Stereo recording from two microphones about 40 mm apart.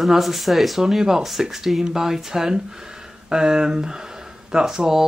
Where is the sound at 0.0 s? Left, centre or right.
Centre.